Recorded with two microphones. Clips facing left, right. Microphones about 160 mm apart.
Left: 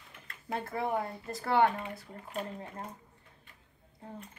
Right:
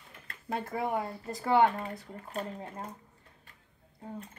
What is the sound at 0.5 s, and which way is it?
Speech, 15° right (ahead or behind).